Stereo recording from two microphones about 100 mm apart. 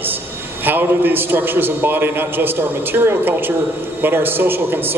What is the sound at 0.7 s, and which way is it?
Speech, 20° right (ahead or behind).